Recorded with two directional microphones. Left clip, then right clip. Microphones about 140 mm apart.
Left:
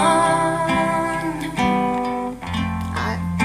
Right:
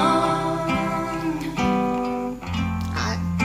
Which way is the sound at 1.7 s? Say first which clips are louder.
Left 2 dB; 40° left (ahead or behind).